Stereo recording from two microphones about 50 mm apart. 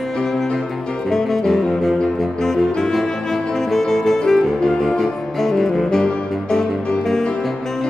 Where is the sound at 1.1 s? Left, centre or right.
Centre.